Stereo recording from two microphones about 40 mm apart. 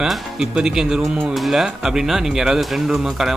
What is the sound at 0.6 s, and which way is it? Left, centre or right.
Speech, centre.